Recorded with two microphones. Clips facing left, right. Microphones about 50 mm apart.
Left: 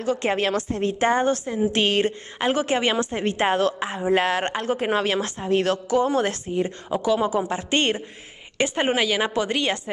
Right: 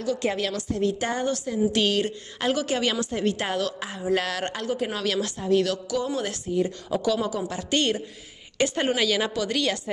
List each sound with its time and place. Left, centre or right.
0.0 s a woman's voice: left